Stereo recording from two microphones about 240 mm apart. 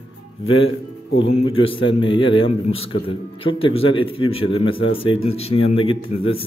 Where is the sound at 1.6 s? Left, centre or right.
Left.